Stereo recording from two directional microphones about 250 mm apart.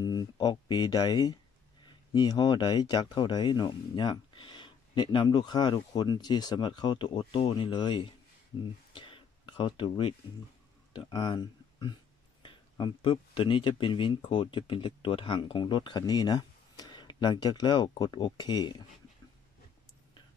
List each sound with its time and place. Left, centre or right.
0.0 s speech: centre
8.9 s a sound: centre
10.9 s speech: centre